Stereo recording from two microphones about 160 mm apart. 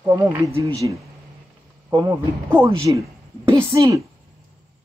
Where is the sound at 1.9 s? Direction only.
15° right (ahead or behind).